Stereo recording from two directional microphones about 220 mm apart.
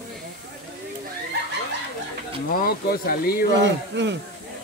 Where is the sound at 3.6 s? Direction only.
55° right (ahead or behind).